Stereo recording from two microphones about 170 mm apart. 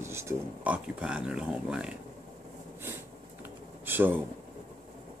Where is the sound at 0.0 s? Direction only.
15° right (ahead or behind).